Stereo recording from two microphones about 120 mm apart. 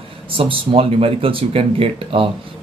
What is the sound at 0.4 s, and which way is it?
Speech, 50° right (ahead or behind).